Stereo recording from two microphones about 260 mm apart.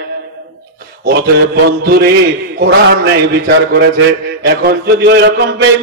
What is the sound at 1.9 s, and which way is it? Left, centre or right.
Speech, right.